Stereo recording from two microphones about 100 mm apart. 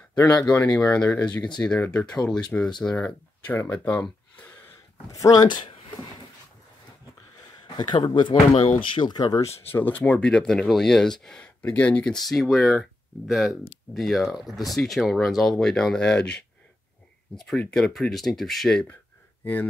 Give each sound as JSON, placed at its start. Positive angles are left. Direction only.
{"t": 0.1, "sound": "speech", "side_deg": 15}
{"t": 5.1, "sound": "speech", "side_deg": 35}
{"t": 7.6, "sound": "speech", "side_deg": 45}
{"t": 9.7, "sound": "speech", "side_deg": 20}